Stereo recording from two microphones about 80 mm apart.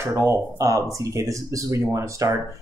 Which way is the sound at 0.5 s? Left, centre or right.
Right.